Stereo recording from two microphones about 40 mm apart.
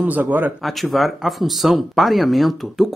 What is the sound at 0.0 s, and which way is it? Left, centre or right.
Speech, right.